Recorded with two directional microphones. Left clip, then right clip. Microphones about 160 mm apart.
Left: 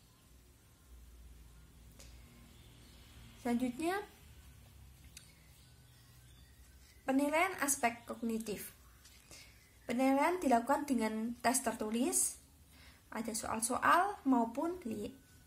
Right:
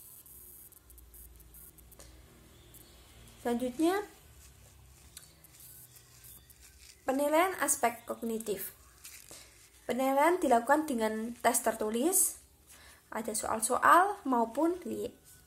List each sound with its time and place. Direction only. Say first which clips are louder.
3.4 s speech: right 6 dB; 25° left (ahead or behind)
7.1 s a sound: right 5 dB; 25° left (ahead or behind)
7.5 s speech: right 4 dB; 25° left (ahead or behind)
9.9 s speech: right 5 dB; 25° left (ahead or behind)